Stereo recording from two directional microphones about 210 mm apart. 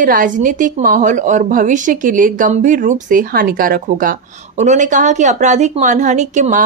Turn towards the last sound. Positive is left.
turn(degrees=-35)  # may be behind; listen again after turning